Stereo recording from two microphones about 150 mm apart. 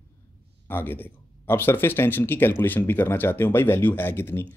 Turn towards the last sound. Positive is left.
turn(degrees=15)  # may be behind; listen again after turning